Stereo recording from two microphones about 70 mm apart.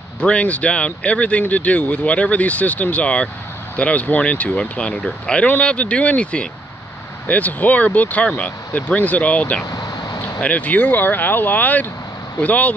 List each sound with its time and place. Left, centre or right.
0.2 s speech: centre
9.7 s a sound: left
10.4 s speech: left